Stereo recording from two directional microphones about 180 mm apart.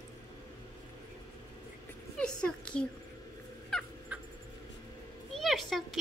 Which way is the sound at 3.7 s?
5° left (ahead or behind).